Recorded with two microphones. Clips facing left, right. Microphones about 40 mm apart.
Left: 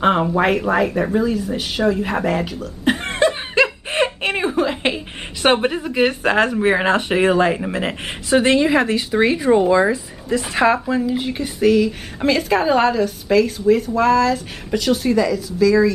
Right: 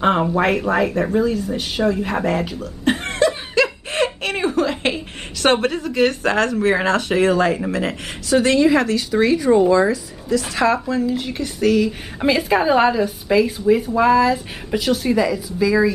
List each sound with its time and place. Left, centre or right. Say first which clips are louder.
0.0 s speech: left 1 dB; centre
3.2 s chuckle: left 1 dB; left
7.7 s a woman's voice: even; left
11.0 s speech: left 1 dB; centre
12.2 s a woman's voice: even; centre